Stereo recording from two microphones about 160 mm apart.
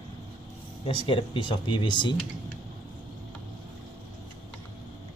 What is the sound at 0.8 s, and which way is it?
Speech, 35° left (ahead or behind).